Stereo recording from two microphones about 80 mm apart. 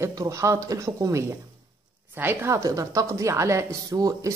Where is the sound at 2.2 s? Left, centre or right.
Right.